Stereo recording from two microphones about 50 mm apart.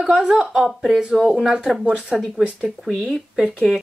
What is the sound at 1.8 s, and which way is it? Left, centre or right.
Speech, right.